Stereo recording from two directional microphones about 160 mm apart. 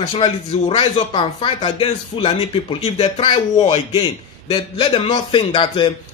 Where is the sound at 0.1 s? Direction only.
35° left (ahead or behind).